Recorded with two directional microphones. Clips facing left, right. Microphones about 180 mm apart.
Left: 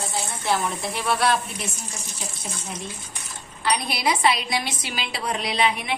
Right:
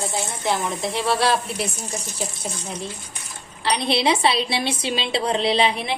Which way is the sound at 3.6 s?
25° right (ahead or behind).